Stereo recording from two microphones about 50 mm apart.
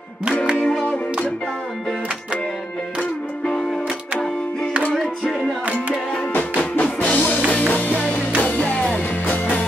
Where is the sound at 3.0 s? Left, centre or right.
Centre.